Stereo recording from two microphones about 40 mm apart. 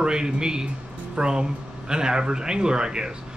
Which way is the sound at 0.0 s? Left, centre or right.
Right.